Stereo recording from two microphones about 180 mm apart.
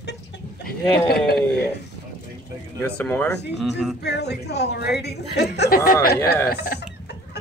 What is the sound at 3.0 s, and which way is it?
Speech, 10° left (ahead or behind).